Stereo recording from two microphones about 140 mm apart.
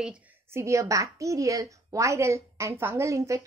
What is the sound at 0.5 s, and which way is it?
A woman's voice, 20° right (ahead or behind).